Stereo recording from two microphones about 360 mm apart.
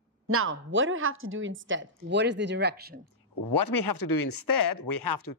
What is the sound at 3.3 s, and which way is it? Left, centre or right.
Speech, left.